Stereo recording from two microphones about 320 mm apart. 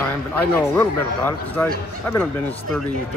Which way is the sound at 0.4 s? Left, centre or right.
Centre.